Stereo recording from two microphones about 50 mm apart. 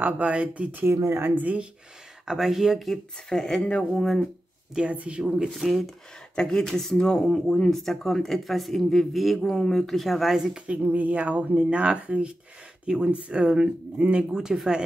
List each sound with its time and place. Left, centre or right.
0.0 s speech: right
0.9 s speech: right
1.2 s speech: right
2.2 s speech: centre
2.9 s speech: centre
4.8 s speech: right
5.6 s speech: centre
6.3 s speech: centre
7.7 s speech: centre
9.4 s speech: centre
10.3 s speech: centre
10.9 s speech: right; by 14.8 s centre